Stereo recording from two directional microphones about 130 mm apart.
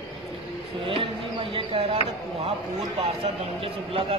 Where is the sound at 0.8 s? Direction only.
45° right (ahead or behind).